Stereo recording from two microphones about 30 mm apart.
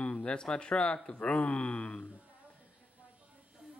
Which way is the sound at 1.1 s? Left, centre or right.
Left.